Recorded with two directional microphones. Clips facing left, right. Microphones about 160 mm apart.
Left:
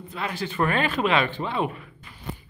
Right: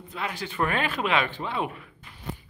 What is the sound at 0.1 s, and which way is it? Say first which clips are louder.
Speech: left 3 dB; 15° right (ahead or behind).